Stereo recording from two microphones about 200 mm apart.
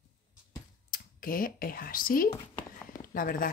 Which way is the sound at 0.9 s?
45° left (ahead or behind).